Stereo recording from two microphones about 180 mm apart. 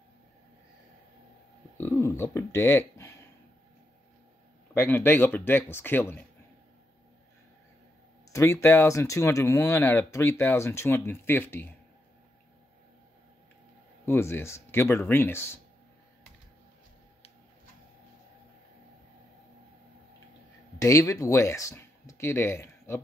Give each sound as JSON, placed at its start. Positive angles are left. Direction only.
{"t": 1.8, "sound": "speech", "side_deg": 15}
{"t": 3.0, "sound": "a sound", "side_deg": 15}
{"t": 4.7, "sound": "speech", "side_deg": 10}
{"t": 8.3, "sound": "speech", "side_deg": 15}
{"t": 14.0, "sound": "speech", "side_deg": 15}
{"t": 20.8, "sound": "speech", "side_deg": 20}